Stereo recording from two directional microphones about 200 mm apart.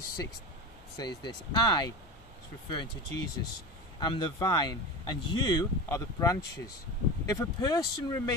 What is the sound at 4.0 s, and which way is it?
Speech, 20° left (ahead or behind).